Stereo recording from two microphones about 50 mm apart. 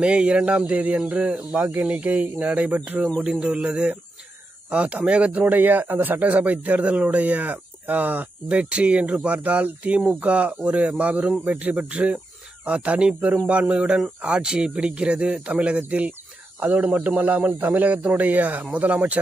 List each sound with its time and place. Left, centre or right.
0.4 s speech: right
3.3 s speech: centre
5.4 s speech: right
8.5 s speech: right